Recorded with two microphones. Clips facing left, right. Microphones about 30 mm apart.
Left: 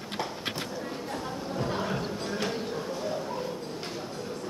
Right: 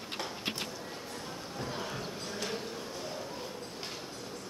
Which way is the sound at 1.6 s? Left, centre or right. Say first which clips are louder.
Left 7 dB; left.